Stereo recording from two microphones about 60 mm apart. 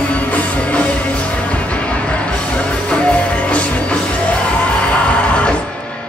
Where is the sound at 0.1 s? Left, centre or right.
Left.